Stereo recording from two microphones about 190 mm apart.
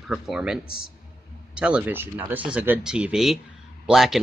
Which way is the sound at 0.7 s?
50° left (ahead or behind).